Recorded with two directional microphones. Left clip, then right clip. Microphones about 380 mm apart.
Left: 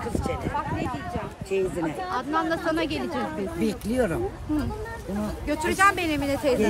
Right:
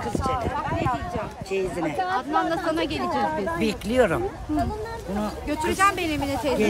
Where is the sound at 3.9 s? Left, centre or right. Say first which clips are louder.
Right 6 dB; centre.